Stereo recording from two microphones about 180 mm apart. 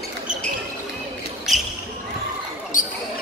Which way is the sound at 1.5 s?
Centre (ahead or behind).